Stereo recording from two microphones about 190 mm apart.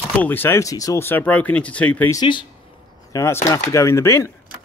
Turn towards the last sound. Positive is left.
turn(degrees=15)  # may be behind; listen again after turning